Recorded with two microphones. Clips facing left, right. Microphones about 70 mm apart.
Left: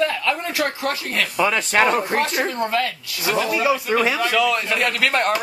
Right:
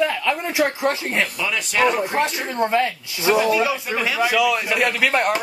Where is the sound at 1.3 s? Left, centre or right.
Left.